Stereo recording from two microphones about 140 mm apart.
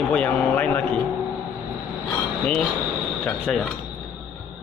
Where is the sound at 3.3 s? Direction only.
5° left (ahead or behind).